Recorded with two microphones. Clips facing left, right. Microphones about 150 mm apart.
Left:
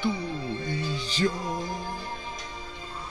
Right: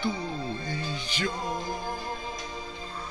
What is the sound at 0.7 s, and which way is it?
Speech, 35° left (ahead or behind).